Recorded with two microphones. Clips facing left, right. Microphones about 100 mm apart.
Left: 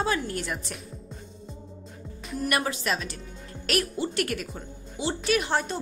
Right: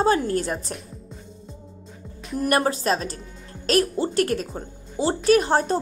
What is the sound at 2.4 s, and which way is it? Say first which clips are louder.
A woman's voice: right 6 dB; 40° right (ahead or behind).